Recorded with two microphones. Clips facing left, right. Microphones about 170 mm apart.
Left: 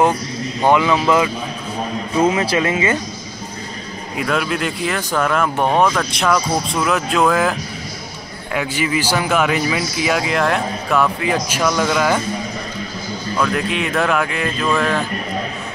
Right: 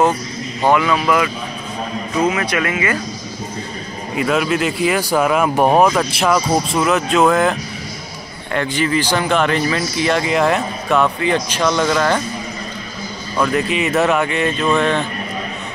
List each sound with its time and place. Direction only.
0.6 s speech: 20° left (ahead or behind)
4.2 s speech: 5° right (ahead or behind)
8.5 s speech: 10° left (ahead or behind)
13.4 s speech: centre (ahead or behind)